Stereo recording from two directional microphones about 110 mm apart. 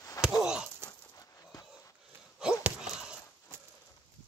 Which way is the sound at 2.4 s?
5° right (ahead or behind).